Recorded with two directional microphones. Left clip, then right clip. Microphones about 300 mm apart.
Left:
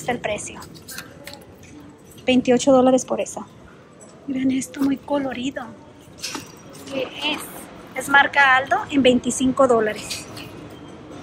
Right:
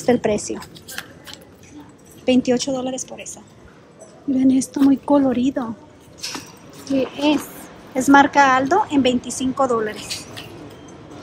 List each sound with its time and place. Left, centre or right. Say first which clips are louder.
0.0 s speech: right 6 dB; centre
2.2 s a woman's voice: left 2 dB; centre
4.4 s speech: right 6 dB; centre
7.0 s speech: right 5 dB; centre